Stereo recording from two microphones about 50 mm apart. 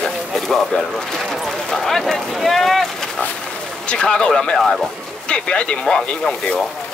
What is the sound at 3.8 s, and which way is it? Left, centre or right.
Speech, centre.